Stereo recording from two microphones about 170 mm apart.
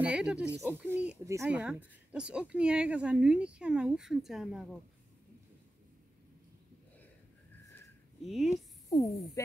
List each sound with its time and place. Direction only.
0.0 s speech: 5° right (ahead or behind)
8.2 s speech: centre (ahead or behind)
8.9 s speech: 20° left (ahead or behind)